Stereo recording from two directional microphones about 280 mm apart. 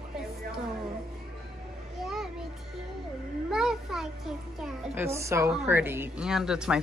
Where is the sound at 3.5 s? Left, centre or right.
Centre.